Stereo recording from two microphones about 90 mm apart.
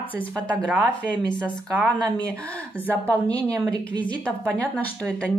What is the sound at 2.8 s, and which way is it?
Speech, 20° left (ahead or behind).